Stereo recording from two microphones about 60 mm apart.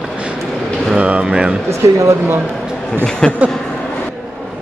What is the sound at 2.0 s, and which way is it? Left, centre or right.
Speech, right.